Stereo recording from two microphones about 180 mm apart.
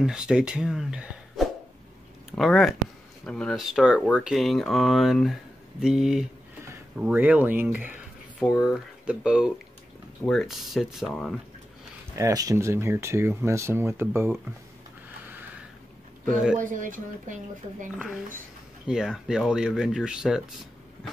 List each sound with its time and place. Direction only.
0.0 s speech: 5° right (ahead or behind)
12.2 s speech: 20° right (ahead or behind)
16.5 s speech: 45° right (ahead or behind)
18.9 s speech: 5° right (ahead or behind)